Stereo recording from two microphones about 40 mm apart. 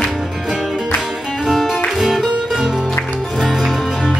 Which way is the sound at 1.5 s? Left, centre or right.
Centre.